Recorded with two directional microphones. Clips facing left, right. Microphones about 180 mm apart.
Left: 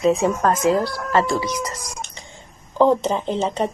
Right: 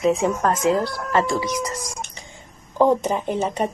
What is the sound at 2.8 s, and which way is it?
Speech, 10° right (ahead or behind).